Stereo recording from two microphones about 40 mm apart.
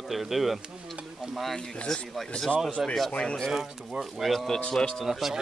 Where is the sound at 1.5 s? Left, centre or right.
Centre.